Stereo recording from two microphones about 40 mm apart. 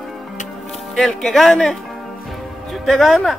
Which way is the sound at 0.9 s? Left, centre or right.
Centre.